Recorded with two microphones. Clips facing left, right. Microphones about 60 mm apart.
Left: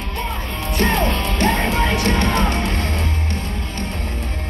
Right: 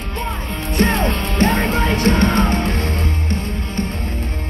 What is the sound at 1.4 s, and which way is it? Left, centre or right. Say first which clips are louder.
Music: right 2 dB; right.